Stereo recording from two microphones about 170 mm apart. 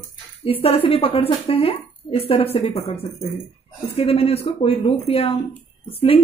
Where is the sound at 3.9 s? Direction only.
35° left (ahead or behind).